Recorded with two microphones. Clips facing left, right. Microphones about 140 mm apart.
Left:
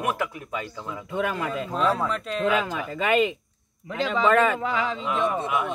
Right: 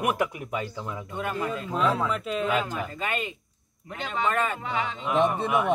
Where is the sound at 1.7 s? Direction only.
10° right (ahead or behind).